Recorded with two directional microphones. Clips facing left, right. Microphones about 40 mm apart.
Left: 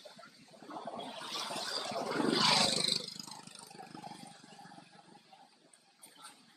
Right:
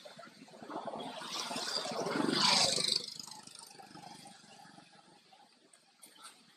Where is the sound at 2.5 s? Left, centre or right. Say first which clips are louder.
Left 1 dB; left; by 4.9 s centre.